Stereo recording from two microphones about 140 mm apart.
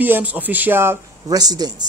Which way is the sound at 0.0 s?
10° right (ahead or behind).